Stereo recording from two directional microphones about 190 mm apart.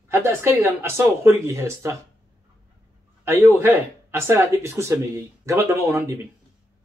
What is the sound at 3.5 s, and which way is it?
Speech, 15° right (ahead or behind).